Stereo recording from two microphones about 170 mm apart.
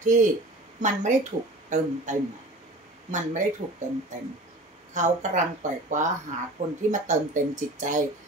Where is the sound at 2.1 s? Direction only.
45° right (ahead or behind).